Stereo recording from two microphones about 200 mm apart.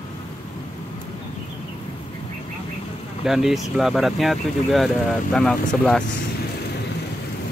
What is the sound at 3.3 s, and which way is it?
Speech, centre (ahead or behind).